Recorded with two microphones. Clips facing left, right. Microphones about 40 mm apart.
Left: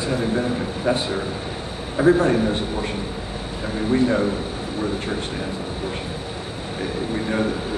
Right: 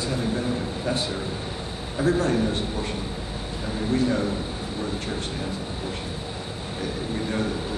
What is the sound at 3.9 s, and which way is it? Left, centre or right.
Speech, left.